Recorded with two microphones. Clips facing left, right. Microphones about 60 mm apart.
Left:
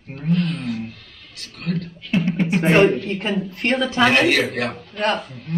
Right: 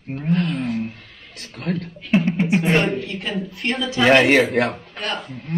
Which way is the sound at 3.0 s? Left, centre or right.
Left.